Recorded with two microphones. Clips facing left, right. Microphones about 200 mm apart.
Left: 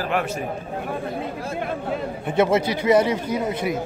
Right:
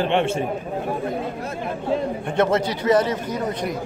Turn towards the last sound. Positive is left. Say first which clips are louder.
# left 2 dB
turn(degrees=5)  # may be behind; listen again after turning